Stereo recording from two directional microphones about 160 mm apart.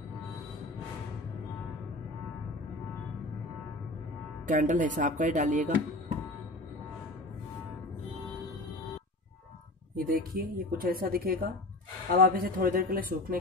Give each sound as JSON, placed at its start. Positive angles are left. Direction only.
{"t": 4.5, "sound": "speech", "side_deg": -50}
{"t": 9.9, "sound": "speech", "side_deg": -65}